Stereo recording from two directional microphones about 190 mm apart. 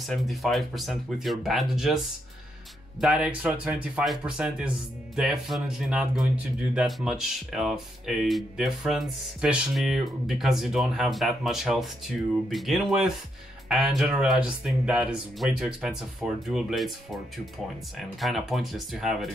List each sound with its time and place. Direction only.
0.0 s speech: centre (ahead or behind)
3.0 s speech: 5° right (ahead or behind)